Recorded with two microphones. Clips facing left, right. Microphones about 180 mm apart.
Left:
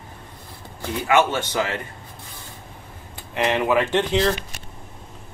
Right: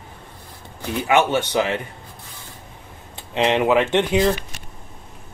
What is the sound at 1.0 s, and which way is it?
Speech, 15° right (ahead or behind).